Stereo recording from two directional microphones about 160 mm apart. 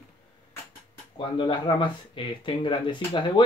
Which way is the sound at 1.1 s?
30° left (ahead or behind).